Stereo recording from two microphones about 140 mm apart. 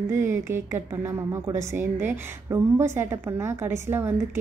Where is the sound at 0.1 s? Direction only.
20° right (ahead or behind).